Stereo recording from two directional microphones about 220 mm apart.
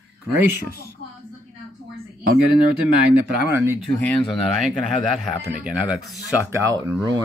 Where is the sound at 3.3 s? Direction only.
10° right (ahead or behind).